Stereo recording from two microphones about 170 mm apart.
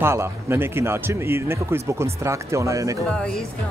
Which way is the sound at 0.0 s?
15° right (ahead or behind).